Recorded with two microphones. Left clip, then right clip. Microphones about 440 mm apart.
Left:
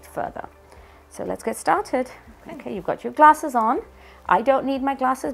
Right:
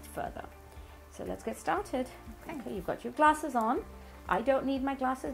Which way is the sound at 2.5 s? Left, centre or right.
Centre.